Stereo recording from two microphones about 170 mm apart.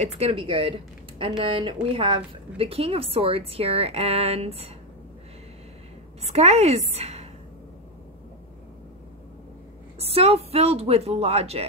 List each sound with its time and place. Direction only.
0.0 s a woman's voice: 35° right (ahead or behind)
6.3 s a woman's voice: 40° right (ahead or behind)
9.9 s a woman's voice: 35° right (ahead or behind)